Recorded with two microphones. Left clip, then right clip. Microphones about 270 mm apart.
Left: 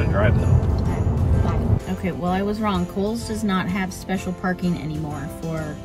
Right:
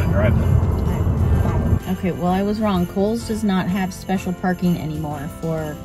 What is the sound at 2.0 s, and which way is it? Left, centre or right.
Speech, centre.